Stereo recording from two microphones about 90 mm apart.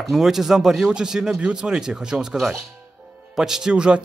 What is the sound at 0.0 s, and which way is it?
Speech, 5° right (ahead or behind).